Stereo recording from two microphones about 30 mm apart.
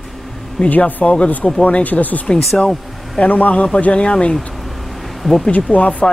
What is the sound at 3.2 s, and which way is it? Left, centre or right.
Speech, left.